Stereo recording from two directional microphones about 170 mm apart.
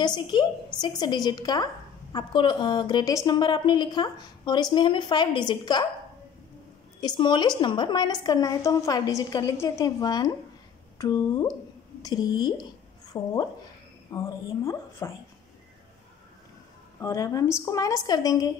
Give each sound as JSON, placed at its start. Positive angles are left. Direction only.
{"t": 0.0, "sound": "a woman's voice", "side_deg": 25}
{"t": 7.0, "sound": "a woman's voice", "side_deg": 25}
{"t": 17.0, "sound": "a woman's voice", "side_deg": 20}